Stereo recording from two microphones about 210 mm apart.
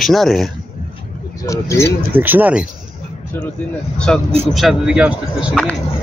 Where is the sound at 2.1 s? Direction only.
10° right (ahead or behind).